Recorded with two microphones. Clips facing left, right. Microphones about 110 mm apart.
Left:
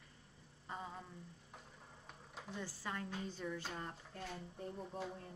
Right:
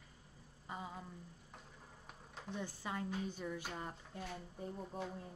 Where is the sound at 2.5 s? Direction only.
15° right (ahead or behind); by 5.1 s centre (ahead or behind).